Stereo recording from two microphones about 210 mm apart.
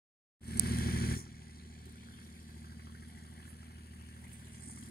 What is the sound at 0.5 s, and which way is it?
Vehicle, 45° left (ahead or behind).